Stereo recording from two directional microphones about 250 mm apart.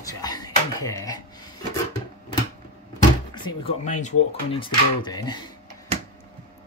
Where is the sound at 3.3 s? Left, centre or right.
Centre.